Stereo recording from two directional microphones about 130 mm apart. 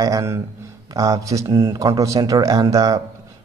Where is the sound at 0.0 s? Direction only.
25° right (ahead or behind).